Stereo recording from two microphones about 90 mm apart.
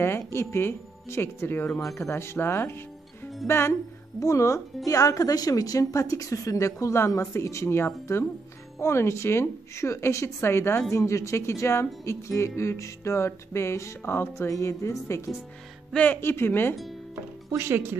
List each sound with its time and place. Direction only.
0.0 s speech: 30° left (ahead or behind)
15.9 s speech: 15° left (ahead or behind)
17.1 s music: 30° right (ahead or behind)